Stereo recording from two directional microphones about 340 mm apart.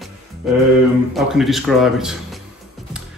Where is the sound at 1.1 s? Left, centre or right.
Centre.